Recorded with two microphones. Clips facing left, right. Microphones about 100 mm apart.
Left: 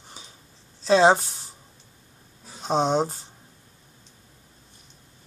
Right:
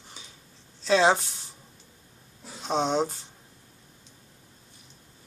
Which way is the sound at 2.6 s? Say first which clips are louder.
Left 3 dB; 35° left (ahead or behind).